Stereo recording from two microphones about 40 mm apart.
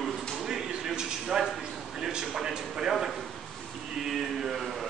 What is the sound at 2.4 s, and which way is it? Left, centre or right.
Speech, centre.